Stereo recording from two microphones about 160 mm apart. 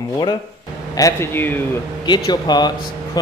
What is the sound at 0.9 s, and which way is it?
Speech, 20° left (ahead or behind).